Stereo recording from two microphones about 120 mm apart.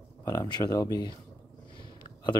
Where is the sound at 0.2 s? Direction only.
30° left (ahead or behind).